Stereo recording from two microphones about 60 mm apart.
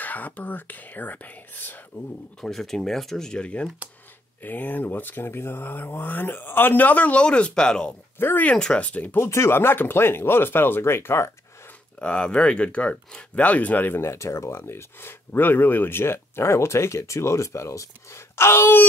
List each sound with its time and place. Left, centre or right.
0.0 s speech: left
2.4 s speech: centre
4.4 s speech: left; by 7.9 s centre
8.2 s speech: left
8.5 s speech: centre
9.2 s speech: left
12.0 s speech: centre
14.0 s speech: left